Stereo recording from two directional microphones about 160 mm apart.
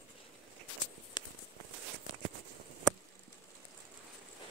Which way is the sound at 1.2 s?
25° left (ahead or behind).